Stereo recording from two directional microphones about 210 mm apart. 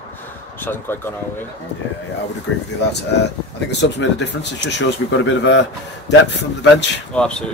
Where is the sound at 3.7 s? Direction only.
55° left (ahead or behind).